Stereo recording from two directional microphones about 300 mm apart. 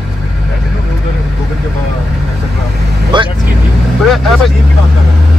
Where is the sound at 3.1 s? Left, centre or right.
Centre.